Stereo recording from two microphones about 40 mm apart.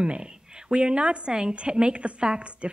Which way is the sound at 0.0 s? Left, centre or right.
Right.